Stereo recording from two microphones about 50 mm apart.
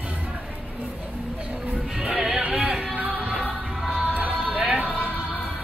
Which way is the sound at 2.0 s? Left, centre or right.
Centre.